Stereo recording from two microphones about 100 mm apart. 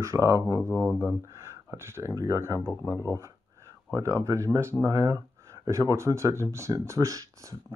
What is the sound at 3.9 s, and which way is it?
Speech, 30° right (ahead or behind).